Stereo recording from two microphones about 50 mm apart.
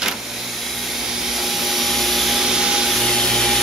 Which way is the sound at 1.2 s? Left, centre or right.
Centre.